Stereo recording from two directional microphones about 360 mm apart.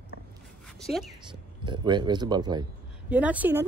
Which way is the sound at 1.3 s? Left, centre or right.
Centre.